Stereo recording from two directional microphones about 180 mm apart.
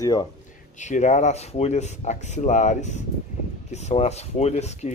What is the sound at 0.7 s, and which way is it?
Speech, 40° left (ahead or behind).